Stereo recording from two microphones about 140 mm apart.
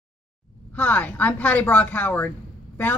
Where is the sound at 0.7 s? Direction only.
10° left (ahead or behind).